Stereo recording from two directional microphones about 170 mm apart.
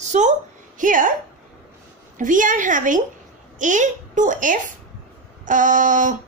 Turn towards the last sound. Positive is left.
turn(degrees=-50)  # may be behind; listen again after turning